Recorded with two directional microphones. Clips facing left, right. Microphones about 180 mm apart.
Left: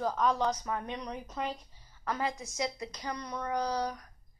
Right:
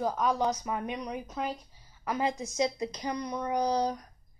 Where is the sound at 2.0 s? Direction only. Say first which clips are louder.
Right 4 dB; 15° right (ahead or behind).